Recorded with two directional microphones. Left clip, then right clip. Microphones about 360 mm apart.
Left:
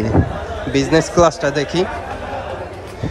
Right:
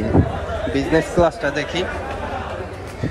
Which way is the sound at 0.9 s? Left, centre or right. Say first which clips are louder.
Left 4 dB; right.